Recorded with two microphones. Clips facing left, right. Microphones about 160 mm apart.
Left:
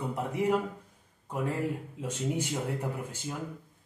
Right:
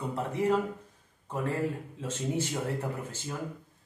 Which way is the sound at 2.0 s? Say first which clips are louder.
Right 1 dB; 15° left (ahead or behind).